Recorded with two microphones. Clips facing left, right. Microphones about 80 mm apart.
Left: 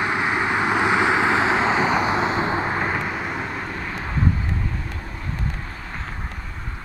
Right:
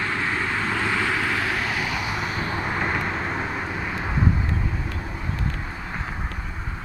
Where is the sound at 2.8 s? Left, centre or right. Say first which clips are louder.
Left 1 dB; centre.